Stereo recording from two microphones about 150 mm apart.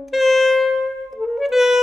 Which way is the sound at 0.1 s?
Centre (ahead or behind).